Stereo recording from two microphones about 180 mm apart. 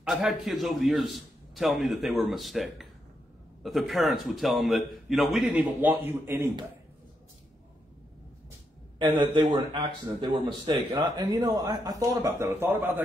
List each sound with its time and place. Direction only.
0.1 s a man's voice: centre (ahead or behind)
8.9 s a sound: 30° right (ahead or behind)
9.5 s a man's voice: 25° right (ahead or behind)